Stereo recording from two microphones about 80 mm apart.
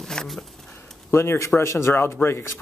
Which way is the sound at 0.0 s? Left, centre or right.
Centre.